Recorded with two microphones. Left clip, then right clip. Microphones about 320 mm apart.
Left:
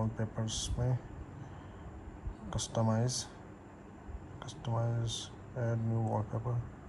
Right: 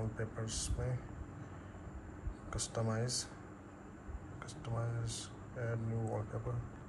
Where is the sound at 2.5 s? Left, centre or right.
Centre.